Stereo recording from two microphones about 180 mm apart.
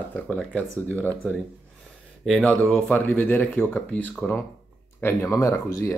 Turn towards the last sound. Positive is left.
turn(degrees=15)  # may be behind; listen again after turning